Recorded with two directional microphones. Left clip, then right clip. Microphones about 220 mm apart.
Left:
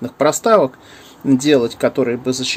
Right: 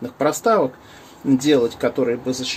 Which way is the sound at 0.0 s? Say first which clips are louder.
Left 4 dB; 50° left (ahead or behind).